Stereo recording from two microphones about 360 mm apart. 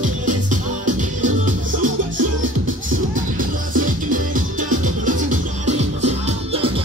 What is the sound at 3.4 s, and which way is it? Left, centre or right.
Music, right.